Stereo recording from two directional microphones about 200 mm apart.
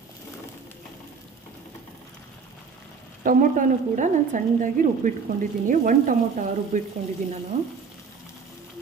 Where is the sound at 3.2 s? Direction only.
40° right (ahead or behind).